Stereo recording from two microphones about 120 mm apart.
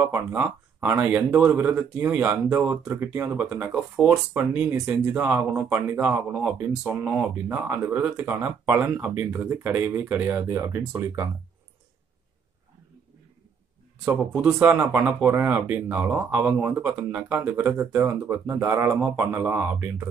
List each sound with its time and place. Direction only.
0.0 s speech: 15° right (ahead or behind); by 4.2 s centre (ahead or behind)
4.3 s speech: 15° right (ahead or behind)
14.4 s speech: 15° right (ahead or behind)